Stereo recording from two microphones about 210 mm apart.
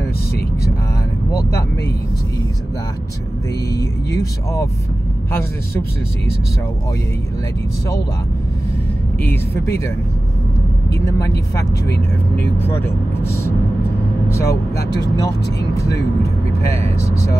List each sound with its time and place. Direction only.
3.7 s speech: 15° left (ahead or behind)
9.2 s speech: 10° left (ahead or behind)
11.1 s speech: 15° left (ahead or behind)
14.3 s speech: 15° left (ahead or behind)